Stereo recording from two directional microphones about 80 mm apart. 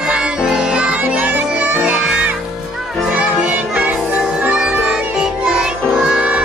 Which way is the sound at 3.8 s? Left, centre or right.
Centre.